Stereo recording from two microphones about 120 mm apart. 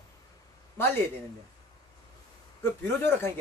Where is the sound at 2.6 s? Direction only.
20° left (ahead or behind).